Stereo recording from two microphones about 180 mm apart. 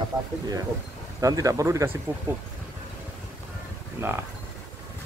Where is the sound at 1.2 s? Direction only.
20° right (ahead or behind).